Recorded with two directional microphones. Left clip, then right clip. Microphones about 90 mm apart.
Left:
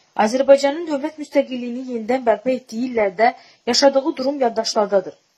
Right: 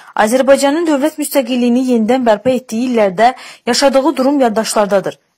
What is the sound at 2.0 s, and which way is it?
Speech, 60° right (ahead or behind).